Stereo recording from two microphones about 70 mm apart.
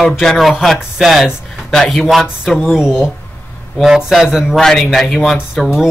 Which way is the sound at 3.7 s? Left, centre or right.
Centre.